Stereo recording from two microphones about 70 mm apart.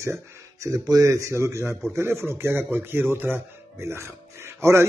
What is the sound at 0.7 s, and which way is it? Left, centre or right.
A man's voice, right.